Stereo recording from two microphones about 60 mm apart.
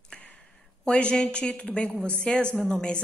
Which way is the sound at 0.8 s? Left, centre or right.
Centre.